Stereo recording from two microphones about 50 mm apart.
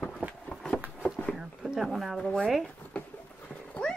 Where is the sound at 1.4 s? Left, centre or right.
Centre.